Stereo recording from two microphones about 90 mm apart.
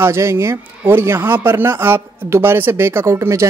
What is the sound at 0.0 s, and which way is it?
Speech, 30° right (ahead or behind).